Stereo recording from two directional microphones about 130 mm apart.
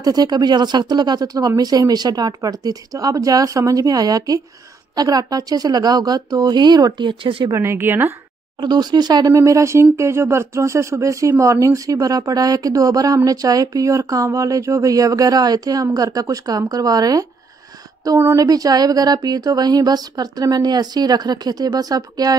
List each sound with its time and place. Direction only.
0.0 s speech: 30° right (ahead or behind)
7.5 s speech: 20° right (ahead or behind)
8.5 s speech: 35° right (ahead or behind)